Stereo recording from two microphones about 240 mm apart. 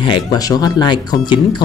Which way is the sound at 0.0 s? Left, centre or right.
Centre.